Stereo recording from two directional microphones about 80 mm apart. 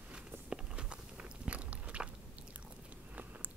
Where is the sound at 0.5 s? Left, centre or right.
Centre.